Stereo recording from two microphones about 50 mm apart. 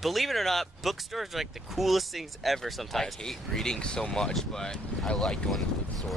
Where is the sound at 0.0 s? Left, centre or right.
Centre.